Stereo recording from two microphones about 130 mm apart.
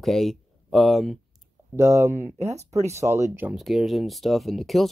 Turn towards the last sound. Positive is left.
turn(degrees=0)  # may be behind; listen again after turning